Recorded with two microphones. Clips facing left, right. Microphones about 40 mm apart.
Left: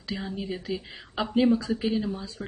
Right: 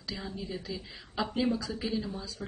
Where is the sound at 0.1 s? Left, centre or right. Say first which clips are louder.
Left 5 dB; left.